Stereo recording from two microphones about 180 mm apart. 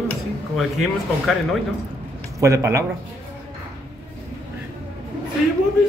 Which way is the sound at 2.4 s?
15° right (ahead or behind).